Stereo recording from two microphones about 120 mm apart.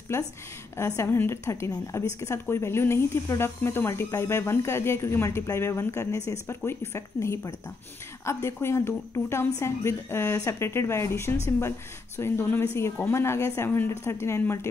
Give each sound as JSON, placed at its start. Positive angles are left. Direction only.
{"t": 0.7, "sound": "speech", "side_deg": 25}